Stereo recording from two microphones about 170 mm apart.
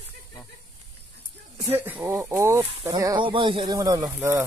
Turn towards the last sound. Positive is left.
turn(degrees=-15)  # may be behind; listen again after turning